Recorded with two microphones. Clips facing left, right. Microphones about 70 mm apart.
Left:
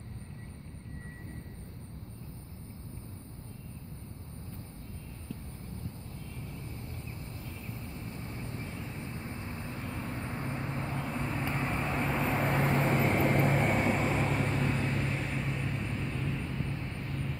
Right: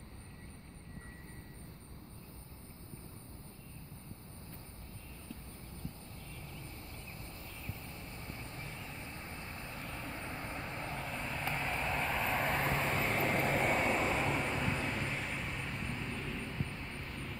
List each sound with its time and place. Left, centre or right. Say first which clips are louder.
9.1 s vehicle: left 6 dB; centre